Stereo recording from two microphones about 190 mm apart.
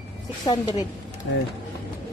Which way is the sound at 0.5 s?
20° left (ahead or behind).